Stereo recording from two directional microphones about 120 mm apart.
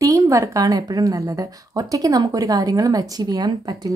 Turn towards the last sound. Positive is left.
turn(degrees=-35)  # may be behind; listen again after turning